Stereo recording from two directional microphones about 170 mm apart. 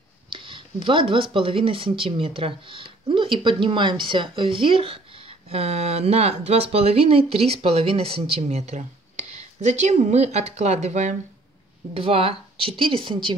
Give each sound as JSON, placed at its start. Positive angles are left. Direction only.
{"t": 0.3, "sound": "speech", "side_deg": -30}